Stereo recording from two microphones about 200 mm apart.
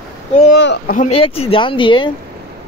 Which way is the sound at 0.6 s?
60° left (ahead or behind).